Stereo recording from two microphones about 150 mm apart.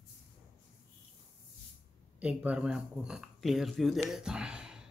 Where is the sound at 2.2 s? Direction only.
10° right (ahead or behind).